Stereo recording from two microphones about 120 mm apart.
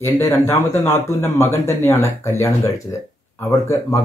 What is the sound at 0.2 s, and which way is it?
Speech, 25° left (ahead or behind).